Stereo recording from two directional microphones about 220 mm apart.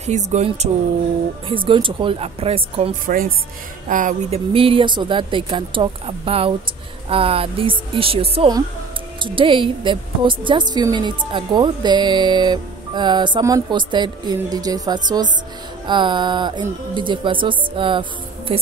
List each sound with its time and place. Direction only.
0.0 s a woman's voice: 30° right (ahead or behind)
3.9 s speech: 35° right (ahead or behind)
4.5 s a woman's voice: 25° right (ahead or behind)